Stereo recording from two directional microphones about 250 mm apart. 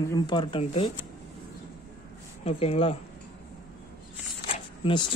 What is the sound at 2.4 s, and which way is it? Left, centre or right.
Speech, left.